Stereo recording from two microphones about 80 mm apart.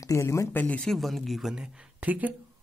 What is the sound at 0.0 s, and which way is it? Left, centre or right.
Speech, left.